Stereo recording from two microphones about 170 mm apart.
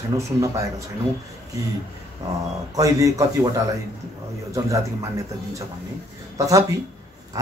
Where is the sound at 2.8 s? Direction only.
20° right (ahead or behind).